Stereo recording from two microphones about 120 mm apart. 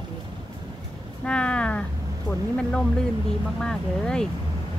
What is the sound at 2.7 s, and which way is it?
Speech, 5° left (ahead or behind).